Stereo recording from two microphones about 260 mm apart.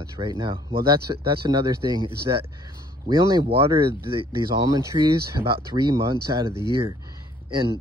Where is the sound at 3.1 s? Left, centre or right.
Centre.